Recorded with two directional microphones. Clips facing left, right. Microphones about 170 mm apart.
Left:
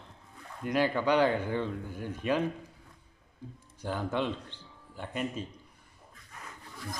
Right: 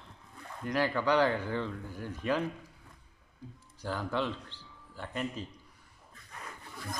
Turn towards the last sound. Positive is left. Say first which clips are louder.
# left 2 dB
turn(degrees=20)  # may be behind; listen again after turning